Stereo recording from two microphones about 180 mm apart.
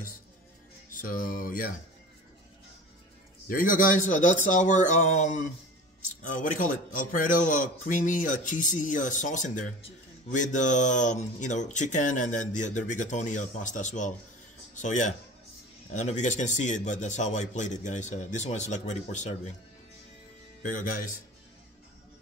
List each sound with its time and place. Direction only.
1.0 s speech: 50° left (ahead or behind)
3.4 s a man's voice: 50° left (ahead or behind)
20.6 s speech: 50° left (ahead or behind)